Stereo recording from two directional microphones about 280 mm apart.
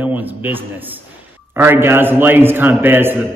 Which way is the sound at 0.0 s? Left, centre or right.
Centre.